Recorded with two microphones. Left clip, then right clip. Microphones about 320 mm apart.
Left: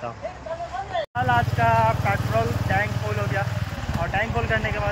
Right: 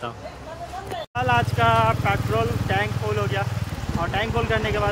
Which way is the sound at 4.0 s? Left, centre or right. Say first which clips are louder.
Right 1 dB; centre.